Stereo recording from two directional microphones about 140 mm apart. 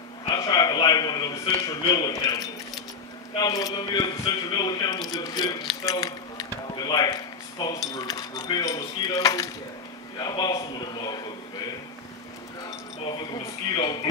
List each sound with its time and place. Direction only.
0.3 s a man's voice: 30° left (ahead or behind)
13.3 s a man's voice: 30° left (ahead or behind)